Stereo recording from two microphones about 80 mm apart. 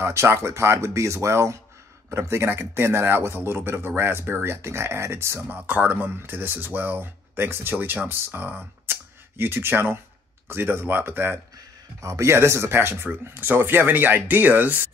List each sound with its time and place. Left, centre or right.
0.0 s speech: right
12.0 s speech: right